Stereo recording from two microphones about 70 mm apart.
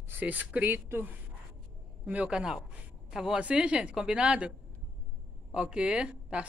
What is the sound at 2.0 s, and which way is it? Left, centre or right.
Speech, centre.